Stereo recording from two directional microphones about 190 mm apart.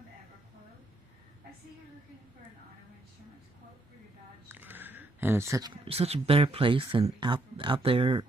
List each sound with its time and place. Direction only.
4.5 s speech: 10° right (ahead or behind); by 8.3 s 25° right (ahead or behind)